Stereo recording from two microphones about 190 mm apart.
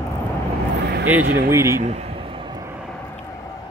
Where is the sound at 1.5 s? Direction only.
15° right (ahead or behind).